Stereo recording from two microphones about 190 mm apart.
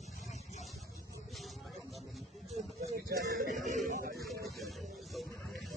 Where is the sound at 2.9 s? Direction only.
50° right (ahead or behind).